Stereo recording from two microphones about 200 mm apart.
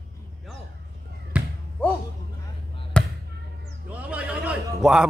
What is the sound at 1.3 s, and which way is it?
Basketball bounce, 5° right (ahead or behind).